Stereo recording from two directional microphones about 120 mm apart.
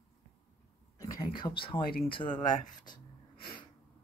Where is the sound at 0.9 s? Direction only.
30° left (ahead or behind).